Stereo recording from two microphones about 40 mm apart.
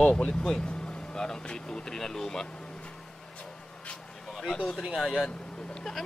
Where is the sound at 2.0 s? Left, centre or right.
Centre.